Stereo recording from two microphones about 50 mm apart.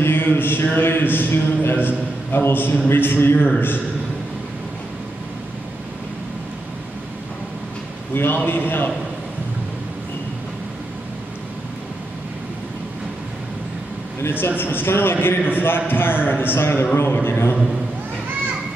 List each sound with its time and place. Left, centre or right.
0.0 s a sound: left
0.7 s a man's voice: left
8.1 s a man's voice: left
14.2 s a man's voice: left